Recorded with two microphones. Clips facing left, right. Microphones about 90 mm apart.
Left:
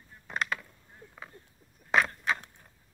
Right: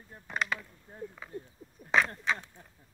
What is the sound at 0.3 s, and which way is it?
Mechanisms, centre (ahead or behind).